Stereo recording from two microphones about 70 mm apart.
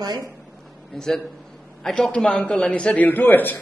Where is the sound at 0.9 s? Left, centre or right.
Centre.